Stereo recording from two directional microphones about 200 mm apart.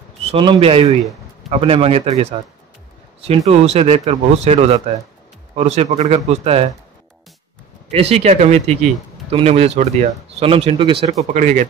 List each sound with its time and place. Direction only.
0.2 s a man's voice: 25° right (ahead or behind)
7.9 s speech: 30° right (ahead or behind)
11.3 s speech: 40° right (ahead or behind)